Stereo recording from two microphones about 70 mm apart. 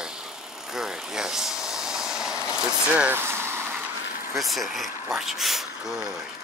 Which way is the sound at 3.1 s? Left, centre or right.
Right.